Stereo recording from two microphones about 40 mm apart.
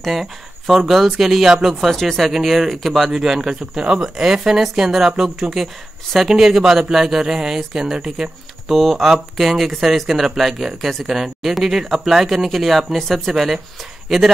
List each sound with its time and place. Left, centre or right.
0.0 s speech: centre
1.9 s a man's voice: centre
8.7 s speech: centre